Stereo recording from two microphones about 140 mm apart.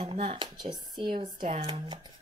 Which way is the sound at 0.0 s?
40° right (ahead or behind).